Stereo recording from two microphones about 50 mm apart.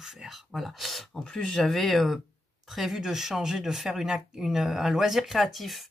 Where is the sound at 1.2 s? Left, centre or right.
Centre.